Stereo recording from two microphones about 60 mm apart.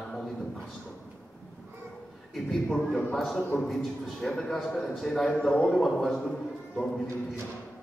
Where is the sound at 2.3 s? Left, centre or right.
Centre.